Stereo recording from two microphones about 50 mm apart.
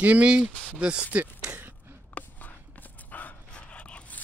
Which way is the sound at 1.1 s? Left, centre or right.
Right.